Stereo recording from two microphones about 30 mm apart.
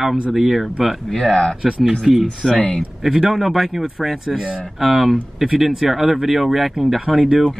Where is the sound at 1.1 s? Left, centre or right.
Left.